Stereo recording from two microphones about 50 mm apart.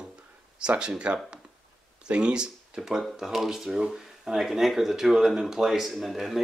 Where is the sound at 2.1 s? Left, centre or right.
Centre.